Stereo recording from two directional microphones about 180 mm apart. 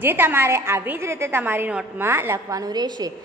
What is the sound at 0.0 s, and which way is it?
A woman's voice, 10° right (ahead or behind).